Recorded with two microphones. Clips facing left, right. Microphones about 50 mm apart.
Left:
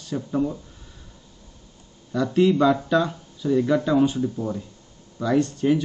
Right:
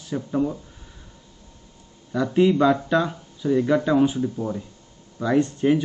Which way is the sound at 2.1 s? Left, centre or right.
Centre.